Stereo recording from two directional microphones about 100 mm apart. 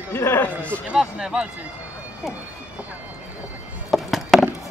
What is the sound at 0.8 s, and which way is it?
Speech, 5° right (ahead or behind).